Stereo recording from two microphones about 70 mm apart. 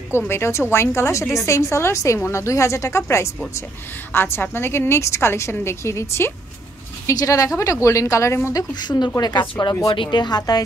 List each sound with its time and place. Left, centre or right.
0.3 s a woman's voice: left
7.1 s a woman's voice: left
9.2 s speech: left
9.8 s speech: left